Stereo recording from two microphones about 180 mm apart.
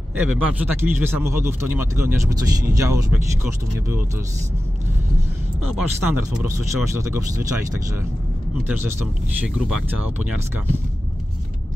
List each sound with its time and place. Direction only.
0.1 s a man's voice: 10° right (ahead or behind)
5.8 s a man's voice: 10° right (ahead or behind)